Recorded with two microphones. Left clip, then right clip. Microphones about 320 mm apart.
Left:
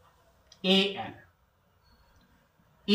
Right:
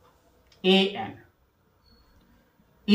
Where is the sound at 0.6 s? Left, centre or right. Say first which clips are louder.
Right 4 dB; centre.